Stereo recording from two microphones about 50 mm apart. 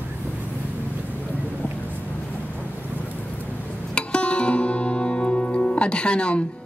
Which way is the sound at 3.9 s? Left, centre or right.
Left.